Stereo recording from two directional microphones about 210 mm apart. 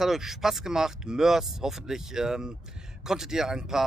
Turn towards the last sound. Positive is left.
turn(degrees=0)  # may be behind; listen again after turning